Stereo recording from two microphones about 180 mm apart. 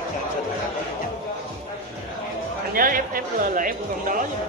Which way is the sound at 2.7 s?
50° right (ahead or behind).